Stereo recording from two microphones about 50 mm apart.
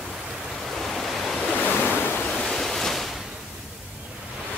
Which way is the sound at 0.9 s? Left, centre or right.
Centre.